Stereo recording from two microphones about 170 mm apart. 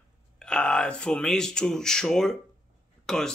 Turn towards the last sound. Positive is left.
turn(degrees=5)  # may be behind; listen again after turning